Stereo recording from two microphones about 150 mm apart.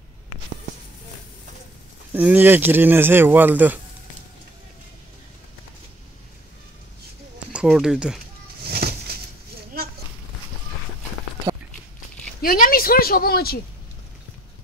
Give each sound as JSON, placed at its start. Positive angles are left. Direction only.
{"t": 2.1, "sound": "speech", "side_deg": -10}
{"t": 7.5, "sound": "speech", "side_deg": -5}
{"t": 8.6, "sound": "a sound", "side_deg": -90}
{"t": 12.4, "sound": "speech", "side_deg": 70}